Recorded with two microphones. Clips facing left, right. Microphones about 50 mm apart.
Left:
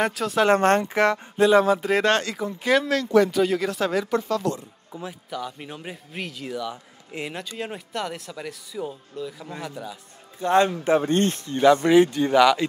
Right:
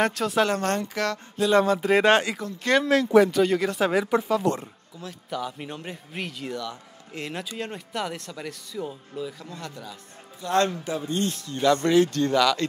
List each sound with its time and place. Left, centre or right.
0.0 s speech: centre
0.5 s speech: left
1.5 s speech: centre
2.0 s speech: centre
2.7 s speech: centre
3.9 s speech: centre
4.9 s speech: left
5.3 s speech: centre
6.6 s a man's voice: centre
7.3 s speech: centre
11.0 s speech: left; by 12.6 s centre